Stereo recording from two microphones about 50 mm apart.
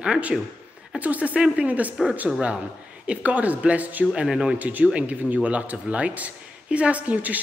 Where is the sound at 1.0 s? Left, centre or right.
Right.